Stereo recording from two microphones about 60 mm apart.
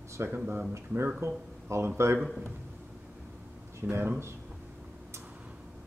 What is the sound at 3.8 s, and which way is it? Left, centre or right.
Speech, right.